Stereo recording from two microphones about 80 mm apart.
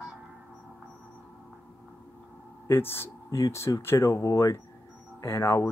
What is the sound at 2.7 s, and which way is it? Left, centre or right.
Speech, left.